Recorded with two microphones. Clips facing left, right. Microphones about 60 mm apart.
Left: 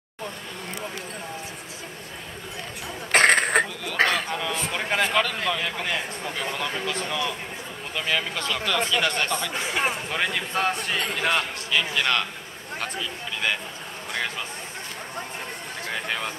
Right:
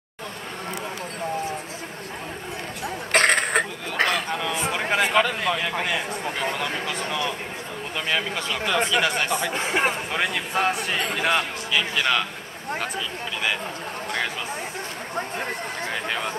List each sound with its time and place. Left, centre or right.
3.1 s a sound: centre
4.9 s a sound: centre
7.9 s speech: centre
9.0 s speech: centre
9.5 s speech: right
10.1 s speech: centre